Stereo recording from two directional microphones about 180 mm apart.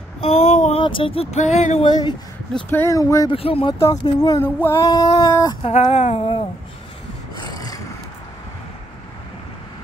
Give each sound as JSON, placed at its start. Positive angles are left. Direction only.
{"t": 0.2, "sound": "speech", "side_deg": 40}
{"t": 2.5, "sound": "speech", "side_deg": 10}
{"t": 3.3, "sound": "speech", "side_deg": 30}
{"t": 3.8, "sound": "a sound", "side_deg": 20}
{"t": 5.6, "sound": "speech", "side_deg": 35}
{"t": 7.4, "sound": "rub", "side_deg": 20}